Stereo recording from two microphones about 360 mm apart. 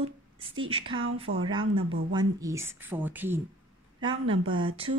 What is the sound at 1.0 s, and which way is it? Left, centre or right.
Speech, right.